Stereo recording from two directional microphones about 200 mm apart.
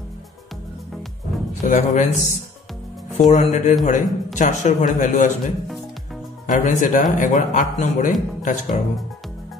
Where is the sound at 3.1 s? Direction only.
40° left (ahead or behind).